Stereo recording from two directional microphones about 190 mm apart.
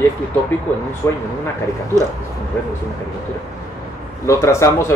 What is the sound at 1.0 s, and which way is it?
Speech, 15° left (ahead or behind).